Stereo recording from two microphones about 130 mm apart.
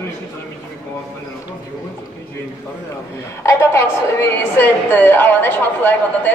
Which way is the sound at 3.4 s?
20° left (ahead or behind).